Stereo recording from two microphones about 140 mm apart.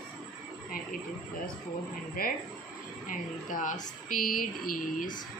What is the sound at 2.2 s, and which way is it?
Speech, 90° left.